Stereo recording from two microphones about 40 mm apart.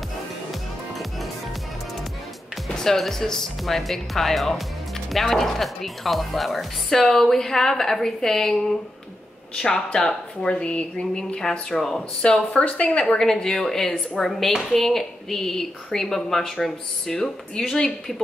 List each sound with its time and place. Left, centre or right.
2.7 s a woman's voice: centre
6.9 s a woman's voice: centre
11.7 s a woman's voice: centre
12.2 s speech: left
13.2 s a woman's voice: centre